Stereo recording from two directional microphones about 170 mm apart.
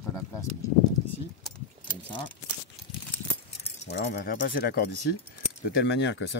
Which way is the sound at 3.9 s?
75° left (ahead or behind).